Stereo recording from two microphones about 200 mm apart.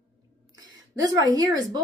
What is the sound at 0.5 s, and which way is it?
A woman's voice, 20° right (ahead or behind).